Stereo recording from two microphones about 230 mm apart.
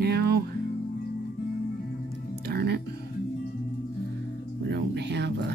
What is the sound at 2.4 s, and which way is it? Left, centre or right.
Music, right.